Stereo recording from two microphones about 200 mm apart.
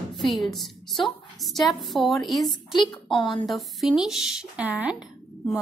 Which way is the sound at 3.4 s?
Centre (ahead or behind).